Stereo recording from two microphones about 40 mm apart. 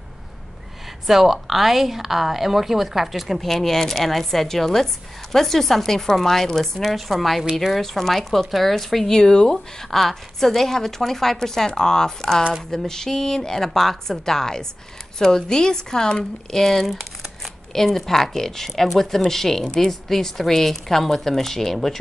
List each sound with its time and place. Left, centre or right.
1.0 s a woman's voice: centre
9.2 s a woman's voice: centre
17.7 s a woman's voice: centre